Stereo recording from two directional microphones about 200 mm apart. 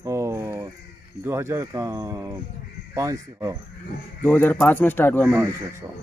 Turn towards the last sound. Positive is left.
turn(degrees=-15)  # may be behind; listen again after turning